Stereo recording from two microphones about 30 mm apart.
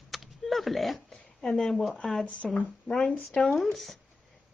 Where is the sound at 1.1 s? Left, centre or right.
Left.